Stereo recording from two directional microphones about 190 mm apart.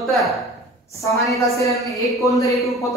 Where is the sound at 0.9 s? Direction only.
15° left (ahead or behind).